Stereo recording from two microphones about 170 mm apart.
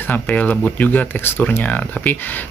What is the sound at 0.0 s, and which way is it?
Speech, 10° left (ahead or behind).